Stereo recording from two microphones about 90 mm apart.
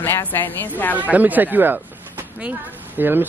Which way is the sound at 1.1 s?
20° right (ahead or behind).